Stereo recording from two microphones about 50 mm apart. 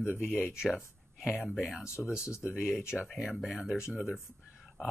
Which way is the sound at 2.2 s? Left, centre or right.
Left.